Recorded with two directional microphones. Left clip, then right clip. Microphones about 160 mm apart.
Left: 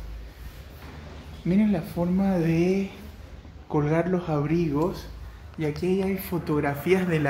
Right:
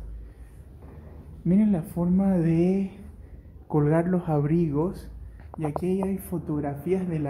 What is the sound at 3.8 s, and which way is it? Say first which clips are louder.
Speech: even; 55° right (ahead or behind).